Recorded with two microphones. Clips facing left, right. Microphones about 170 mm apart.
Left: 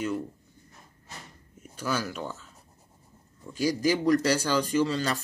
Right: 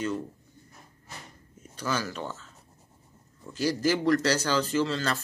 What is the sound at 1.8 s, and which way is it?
Speech, 10° left (ahead or behind).